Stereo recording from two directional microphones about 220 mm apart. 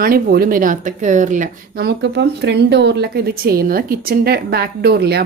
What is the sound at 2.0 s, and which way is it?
A woman's voice, 50° right (ahead or behind).